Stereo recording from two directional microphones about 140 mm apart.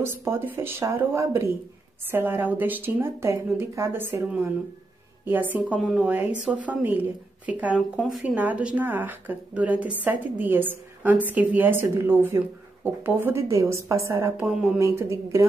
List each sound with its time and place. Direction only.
0.0 s a woman's voice: 15° right (ahead or behind); by 8.4 s centre (ahead or behind)
8.4 s a woman's voice: 10° right (ahead or behind)
14.5 s speech: 5° right (ahead or behind)
14.8 s a woman's voice: 20° right (ahead or behind)